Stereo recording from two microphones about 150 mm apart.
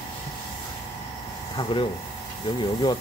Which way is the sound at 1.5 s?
35° left (ahead or behind).